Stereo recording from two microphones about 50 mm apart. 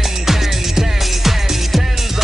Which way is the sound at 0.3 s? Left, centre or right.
Centre.